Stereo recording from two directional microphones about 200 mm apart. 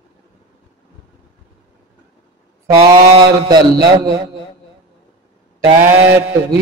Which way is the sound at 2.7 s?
20° right (ahead or behind).